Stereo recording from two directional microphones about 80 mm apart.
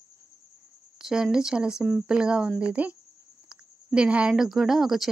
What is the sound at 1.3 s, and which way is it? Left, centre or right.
Speech, centre.